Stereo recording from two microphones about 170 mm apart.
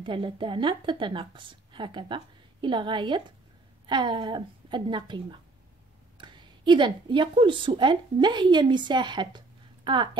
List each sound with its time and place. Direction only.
0.0 s a woman's voice: 30° right (ahead or behind)